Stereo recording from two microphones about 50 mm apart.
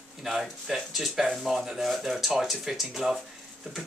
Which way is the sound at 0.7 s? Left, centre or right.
Centre.